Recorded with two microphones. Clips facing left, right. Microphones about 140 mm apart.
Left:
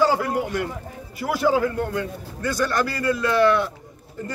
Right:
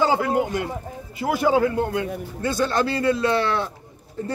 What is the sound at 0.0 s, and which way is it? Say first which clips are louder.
Speech: right 1 dB; 20° right (ahead or behind).